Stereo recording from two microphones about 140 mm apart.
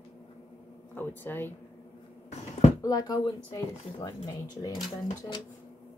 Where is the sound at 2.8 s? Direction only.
25° left (ahead or behind).